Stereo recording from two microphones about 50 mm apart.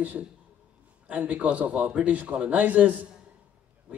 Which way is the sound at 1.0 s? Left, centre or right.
Right.